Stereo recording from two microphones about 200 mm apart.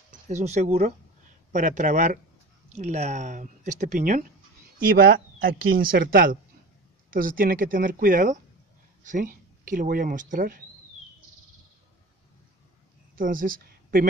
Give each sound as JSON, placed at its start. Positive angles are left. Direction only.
{"t": 0.3, "sound": "speech", "side_deg": -35}
{"t": 13.1, "sound": "speech", "side_deg": -45}